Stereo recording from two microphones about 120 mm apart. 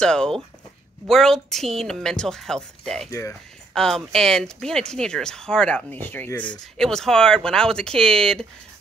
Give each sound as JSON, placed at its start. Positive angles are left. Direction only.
{"t": 0.0, "sound": "speech", "side_deg": 5}
{"t": 3.1, "sound": "speech", "side_deg": 25}
{"t": 3.7, "sound": "speech", "side_deg": 5}